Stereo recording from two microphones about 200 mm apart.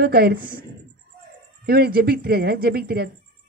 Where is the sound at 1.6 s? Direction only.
50° right (ahead or behind).